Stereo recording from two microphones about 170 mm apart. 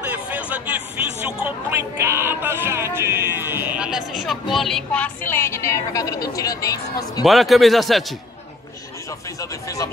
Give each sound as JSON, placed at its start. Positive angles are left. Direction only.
{"t": 0.0, "sound": "speech", "side_deg": -10}
{"t": 7.2, "sound": "a man's voice", "side_deg": 0}
{"t": 9.4, "sound": "speech", "side_deg": 20}